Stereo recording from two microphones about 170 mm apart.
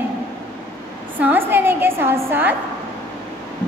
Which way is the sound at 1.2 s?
10° right (ahead or behind).